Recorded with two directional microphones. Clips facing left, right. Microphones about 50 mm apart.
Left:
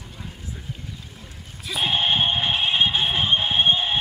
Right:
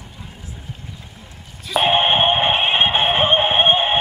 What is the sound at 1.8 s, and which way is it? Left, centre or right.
Music, right.